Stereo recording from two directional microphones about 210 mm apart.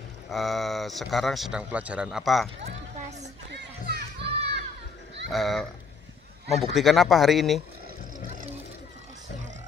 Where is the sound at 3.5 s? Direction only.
50° right (ahead or behind).